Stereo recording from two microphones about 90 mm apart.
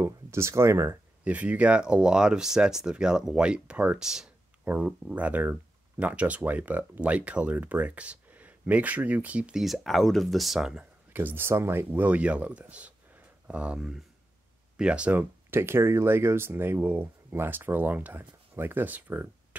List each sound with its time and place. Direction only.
0.0 s speech: 30° right (ahead or behind)
1.2 s speech: 15° right (ahead or behind)
9.6 s speech: centre (ahead or behind)
11.1 s speech: 25° right (ahead or behind)